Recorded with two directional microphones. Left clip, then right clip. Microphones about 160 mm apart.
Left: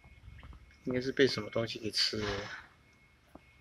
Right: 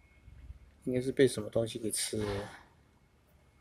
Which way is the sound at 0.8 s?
20° right (ahead or behind).